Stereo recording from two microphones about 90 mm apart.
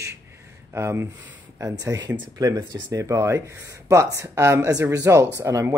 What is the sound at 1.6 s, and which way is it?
Speech, 40° right (ahead or behind).